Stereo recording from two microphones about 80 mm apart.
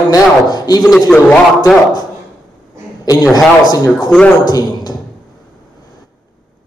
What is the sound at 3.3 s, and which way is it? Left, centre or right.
A man's voice, left.